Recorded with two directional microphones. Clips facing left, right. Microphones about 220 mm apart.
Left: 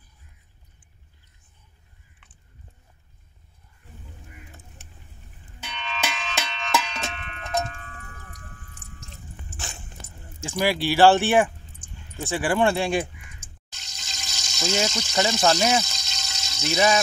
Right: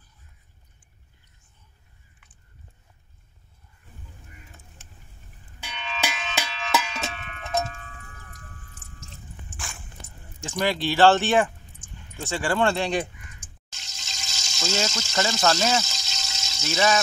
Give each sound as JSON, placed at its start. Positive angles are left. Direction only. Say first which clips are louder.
{"t": 5.6, "sound": "music", "louder": "even", "side_deg": -5}
{"t": 9.5, "sound": "dog", "louder": "left 2 dB", "side_deg": 20}
{"t": 10.4, "sound": "speech", "louder": "left 1 dB", "side_deg": 10}
{"t": 13.7, "sound": "water", "louder": "even", "side_deg": 0}
{"t": 15.0, "sound": "speech", "louder": "left 2 dB", "side_deg": 15}
{"t": 15.8, "sound": "water", "louder": "left 1 dB", "side_deg": 0}
{"t": 16.6, "sound": "speech", "louder": "left 2 dB", "side_deg": 15}